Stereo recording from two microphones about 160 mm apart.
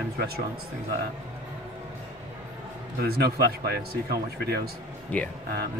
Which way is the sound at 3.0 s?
85° right.